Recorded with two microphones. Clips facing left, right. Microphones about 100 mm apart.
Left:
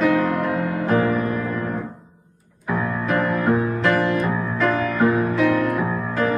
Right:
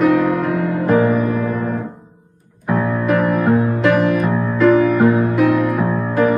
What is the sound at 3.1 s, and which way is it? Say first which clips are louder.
Music: right 4 dB; 15° right (ahead or behind).